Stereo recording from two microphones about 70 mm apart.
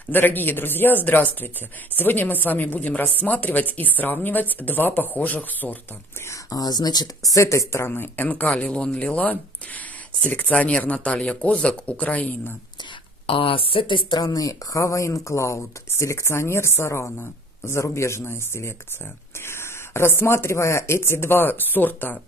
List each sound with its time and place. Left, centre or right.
0.1 s speech: left
6.5 s speech: left
7.3 s speech: left
14.1 s speech: left